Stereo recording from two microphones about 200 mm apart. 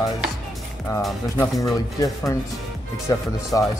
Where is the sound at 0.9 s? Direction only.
Centre (ahead or behind).